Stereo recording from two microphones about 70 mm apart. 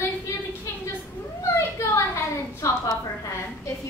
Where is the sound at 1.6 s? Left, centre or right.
Left.